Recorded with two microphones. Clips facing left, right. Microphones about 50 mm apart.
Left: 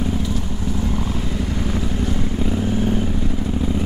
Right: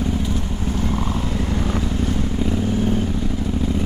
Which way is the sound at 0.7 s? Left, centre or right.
Right.